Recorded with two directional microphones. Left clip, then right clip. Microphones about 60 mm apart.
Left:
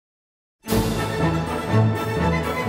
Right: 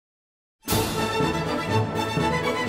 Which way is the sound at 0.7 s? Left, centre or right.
Centre.